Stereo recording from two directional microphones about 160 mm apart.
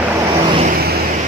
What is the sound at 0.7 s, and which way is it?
Vehicle, 75° right (ahead or behind).